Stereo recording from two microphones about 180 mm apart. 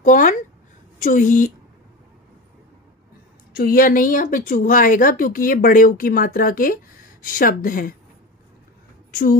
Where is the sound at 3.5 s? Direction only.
55° left (ahead or behind).